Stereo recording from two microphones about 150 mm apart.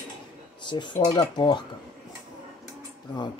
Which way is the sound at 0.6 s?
30° left (ahead or behind).